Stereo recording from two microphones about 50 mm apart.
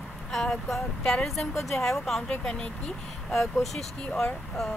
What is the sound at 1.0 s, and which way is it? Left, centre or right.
A woman's voice, centre.